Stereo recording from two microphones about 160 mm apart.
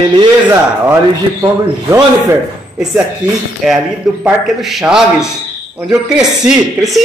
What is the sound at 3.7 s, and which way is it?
A man's voice, 5° right (ahead or behind).